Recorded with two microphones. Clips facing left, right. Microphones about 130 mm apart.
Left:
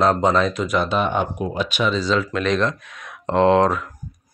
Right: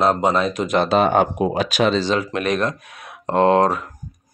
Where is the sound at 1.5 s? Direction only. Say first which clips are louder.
Right 2 dB; 90° right.